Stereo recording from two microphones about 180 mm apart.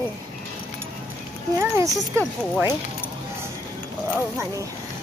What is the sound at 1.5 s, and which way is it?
Speech, 15° right (ahead or behind).